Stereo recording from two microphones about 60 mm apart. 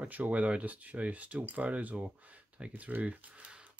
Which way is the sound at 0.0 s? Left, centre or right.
Right.